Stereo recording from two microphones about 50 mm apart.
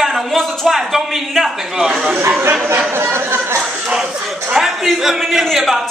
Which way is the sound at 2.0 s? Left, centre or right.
Right.